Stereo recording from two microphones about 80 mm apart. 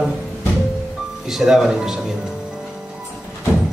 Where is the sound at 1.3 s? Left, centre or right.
Centre.